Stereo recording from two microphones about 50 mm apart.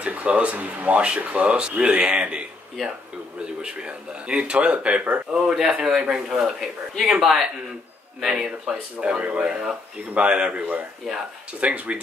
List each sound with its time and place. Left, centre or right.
0.0 s speech: right
5.3 s speech: centre
9.0 s speech: right
11.6 s speech: right